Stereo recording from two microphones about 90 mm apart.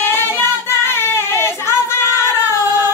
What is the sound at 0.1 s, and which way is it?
Child singing, 30° left (ahead or behind).